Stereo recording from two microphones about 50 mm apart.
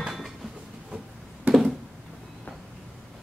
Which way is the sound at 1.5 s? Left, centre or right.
Centre.